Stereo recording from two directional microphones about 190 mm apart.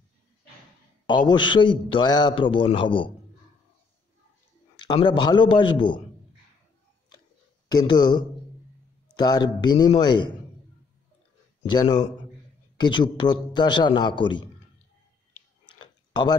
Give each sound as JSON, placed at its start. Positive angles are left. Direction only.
{"t": 1.0, "sound": "a man's voice", "side_deg": 25}
{"t": 4.8, "sound": "a man's voice", "side_deg": 25}
{"t": 7.6, "sound": "a man's voice", "side_deg": 20}
{"t": 11.6, "sound": "a man's voice", "side_deg": 20}
{"t": 15.6, "sound": "tick-tock", "side_deg": 25}